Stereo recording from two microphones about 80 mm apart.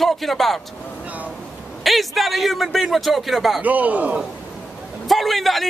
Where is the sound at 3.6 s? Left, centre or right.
Centre.